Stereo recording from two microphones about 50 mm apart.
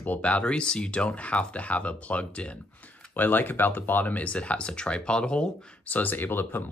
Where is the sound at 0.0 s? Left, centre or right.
Left.